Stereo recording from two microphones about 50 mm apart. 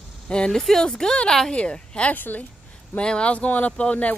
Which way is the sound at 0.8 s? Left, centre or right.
Centre.